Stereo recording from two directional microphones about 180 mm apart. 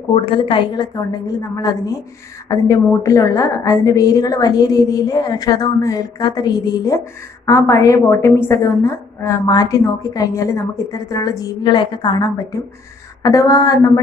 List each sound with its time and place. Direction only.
0.1 s a woman's voice: 30° left (ahead or behind)